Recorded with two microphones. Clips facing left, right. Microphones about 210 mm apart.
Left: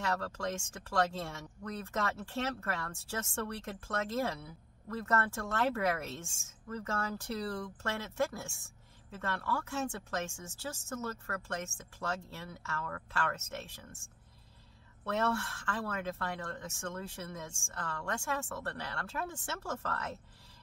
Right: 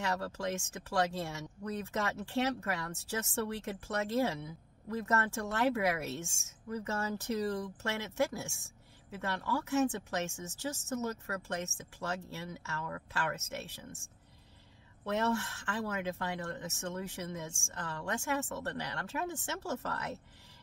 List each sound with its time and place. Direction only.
0.0 s speech: 15° right (ahead or behind)
15.0 s speech: 15° right (ahead or behind)